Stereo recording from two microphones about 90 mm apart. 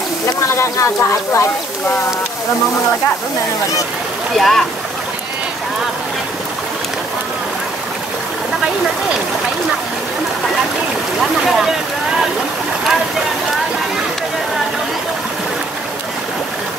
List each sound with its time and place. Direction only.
0.6 s speech: 35° left (ahead or behind)
4.4 s speech: 5° left (ahead or behind)
11.4 s speech: 5° right (ahead or behind)